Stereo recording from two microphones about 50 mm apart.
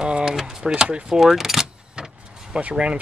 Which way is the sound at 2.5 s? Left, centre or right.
Centre.